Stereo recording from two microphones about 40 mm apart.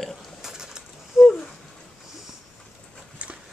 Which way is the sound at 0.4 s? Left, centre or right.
Centre.